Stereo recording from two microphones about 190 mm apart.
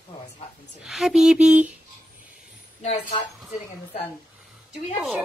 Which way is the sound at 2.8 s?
40° left (ahead or behind).